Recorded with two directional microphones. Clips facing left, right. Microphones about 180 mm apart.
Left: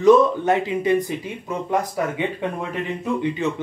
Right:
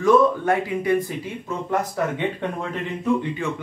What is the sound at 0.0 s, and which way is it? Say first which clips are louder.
Speech: left 3 dB; 20° left (ahead or behind).